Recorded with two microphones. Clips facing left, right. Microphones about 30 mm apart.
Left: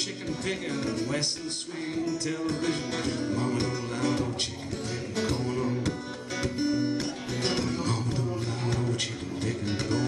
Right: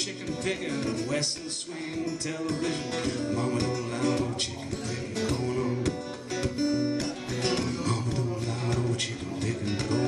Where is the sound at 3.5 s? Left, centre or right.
Left.